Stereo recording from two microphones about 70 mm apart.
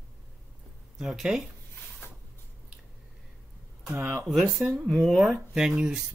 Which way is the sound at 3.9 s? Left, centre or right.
Right.